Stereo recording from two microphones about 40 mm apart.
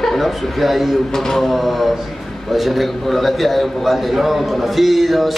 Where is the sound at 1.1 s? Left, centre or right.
Centre.